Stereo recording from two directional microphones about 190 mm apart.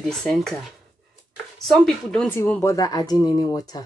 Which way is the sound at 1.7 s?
5° left (ahead or behind).